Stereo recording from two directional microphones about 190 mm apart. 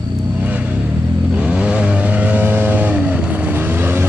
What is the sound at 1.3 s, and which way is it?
Vehicle, 5° right (ahead or behind).